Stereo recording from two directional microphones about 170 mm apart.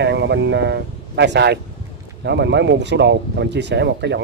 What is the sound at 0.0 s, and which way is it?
Speech, 90° right.